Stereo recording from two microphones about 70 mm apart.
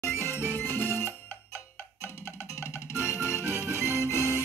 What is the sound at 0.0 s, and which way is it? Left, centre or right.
Music, left.